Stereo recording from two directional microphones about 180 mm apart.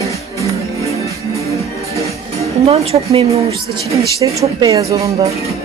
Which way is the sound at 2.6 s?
35° right (ahead or behind).